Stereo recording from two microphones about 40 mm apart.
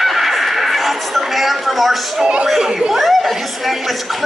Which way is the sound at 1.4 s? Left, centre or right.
Centre.